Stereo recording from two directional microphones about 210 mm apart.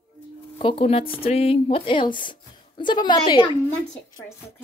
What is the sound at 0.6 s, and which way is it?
Speech, 25° left (ahead or behind).